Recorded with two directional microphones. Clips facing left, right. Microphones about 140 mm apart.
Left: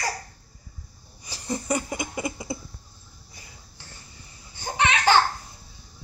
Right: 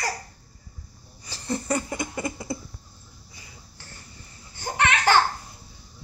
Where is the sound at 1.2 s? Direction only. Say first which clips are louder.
Right 1 dB; 15° left (ahead or behind).